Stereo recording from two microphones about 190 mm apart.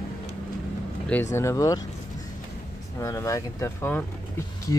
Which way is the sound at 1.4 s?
15° left (ahead or behind).